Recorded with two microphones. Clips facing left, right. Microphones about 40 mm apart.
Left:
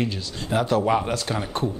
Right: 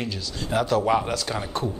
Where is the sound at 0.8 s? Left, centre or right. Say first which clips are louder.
Even; centre.